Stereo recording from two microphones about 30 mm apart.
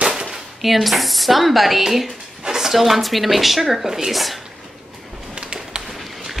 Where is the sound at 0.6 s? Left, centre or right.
Centre.